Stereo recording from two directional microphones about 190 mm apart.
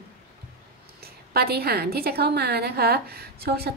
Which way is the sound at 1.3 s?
55° right (ahead or behind).